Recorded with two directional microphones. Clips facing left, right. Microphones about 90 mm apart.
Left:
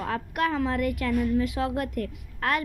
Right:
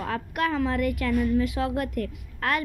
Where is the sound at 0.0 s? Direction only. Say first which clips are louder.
Even; 30° left (ahead or behind).